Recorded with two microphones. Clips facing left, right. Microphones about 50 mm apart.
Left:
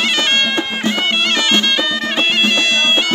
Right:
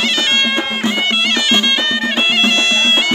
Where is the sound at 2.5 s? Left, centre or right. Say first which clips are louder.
Right 1 dB; centre.